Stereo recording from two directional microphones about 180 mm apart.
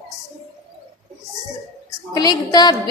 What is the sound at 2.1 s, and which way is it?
Speech, 20° left (ahead or behind).